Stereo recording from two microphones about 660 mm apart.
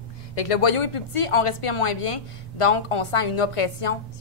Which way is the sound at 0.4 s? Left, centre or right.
Left.